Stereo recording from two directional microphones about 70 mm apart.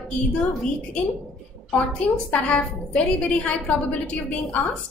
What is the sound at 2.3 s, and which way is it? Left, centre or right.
A woman's voice, centre.